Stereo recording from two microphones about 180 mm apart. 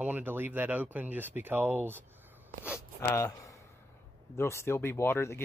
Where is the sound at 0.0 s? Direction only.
10° right (ahead or behind).